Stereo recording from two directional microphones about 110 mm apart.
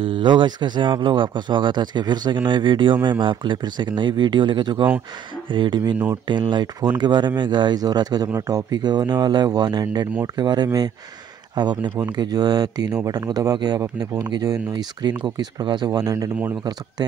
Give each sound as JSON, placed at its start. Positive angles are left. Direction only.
{"t": 0.0, "sound": "speech", "side_deg": -50}